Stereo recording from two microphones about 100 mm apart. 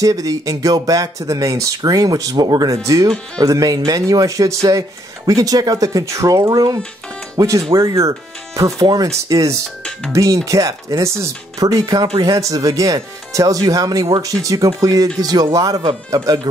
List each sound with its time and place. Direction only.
0.0 s speech: 35° right (ahead or behind)